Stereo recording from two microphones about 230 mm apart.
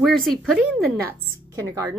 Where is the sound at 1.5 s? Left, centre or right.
Centre.